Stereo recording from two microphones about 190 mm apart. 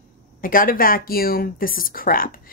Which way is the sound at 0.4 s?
45° left (ahead or behind).